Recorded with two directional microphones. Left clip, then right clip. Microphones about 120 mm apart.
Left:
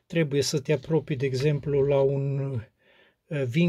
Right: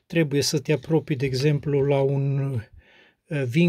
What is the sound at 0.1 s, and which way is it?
Speech, 40° right (ahead or behind).